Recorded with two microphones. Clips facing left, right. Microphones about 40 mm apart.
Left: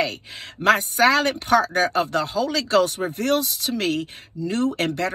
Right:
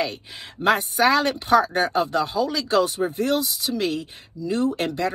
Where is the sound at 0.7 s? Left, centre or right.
Left.